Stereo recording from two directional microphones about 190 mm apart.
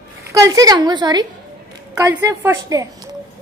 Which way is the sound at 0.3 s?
15° right (ahead or behind).